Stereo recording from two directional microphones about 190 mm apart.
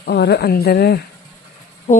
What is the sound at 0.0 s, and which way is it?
Speech, 60° left (ahead or behind).